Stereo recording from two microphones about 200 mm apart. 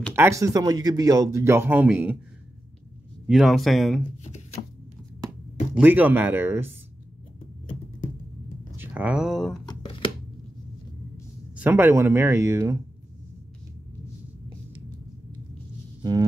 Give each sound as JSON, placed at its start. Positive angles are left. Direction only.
{"t": 0.1, "sound": "speech", "side_deg": -15}
{"t": 3.3, "sound": "speech", "side_deg": 0}
{"t": 4.2, "sound": "chopping", "side_deg": 35}
{"t": 5.8, "sound": "speech", "side_deg": -10}
{"t": 8.7, "sound": "speech", "side_deg": -10}
{"t": 9.7, "sound": "a sound", "side_deg": 25}
{"t": 11.6, "sound": "speech", "side_deg": -10}
{"t": 16.0, "sound": "music", "side_deg": -20}